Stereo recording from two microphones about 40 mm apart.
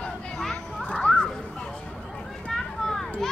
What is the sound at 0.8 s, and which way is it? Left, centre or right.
Speech, left.